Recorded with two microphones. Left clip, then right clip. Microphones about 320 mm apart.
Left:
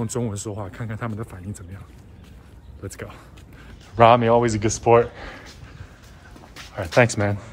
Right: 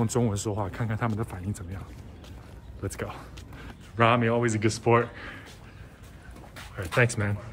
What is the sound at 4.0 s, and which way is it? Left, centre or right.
Speech, centre.